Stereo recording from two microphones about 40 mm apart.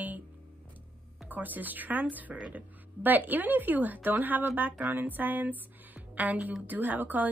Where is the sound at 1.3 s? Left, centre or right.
Right.